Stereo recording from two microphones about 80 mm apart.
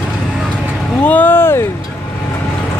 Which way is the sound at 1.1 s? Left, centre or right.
Left.